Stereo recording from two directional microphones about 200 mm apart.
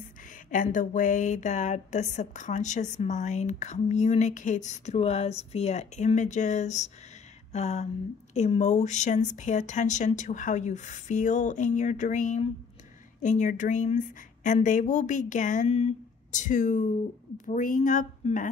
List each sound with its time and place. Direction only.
0.5 s speech: 40° left (ahead or behind)